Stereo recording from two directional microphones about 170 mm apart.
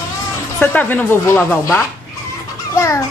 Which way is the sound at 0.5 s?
10° left (ahead or behind).